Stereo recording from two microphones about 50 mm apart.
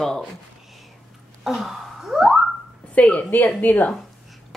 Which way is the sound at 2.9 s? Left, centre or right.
Left.